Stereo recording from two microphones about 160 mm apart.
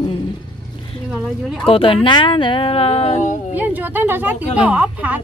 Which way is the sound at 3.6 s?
10° right (ahead or behind).